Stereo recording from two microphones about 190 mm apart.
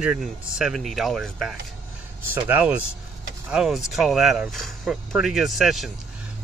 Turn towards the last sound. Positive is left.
turn(degrees=0)  # may be behind; listen again after turning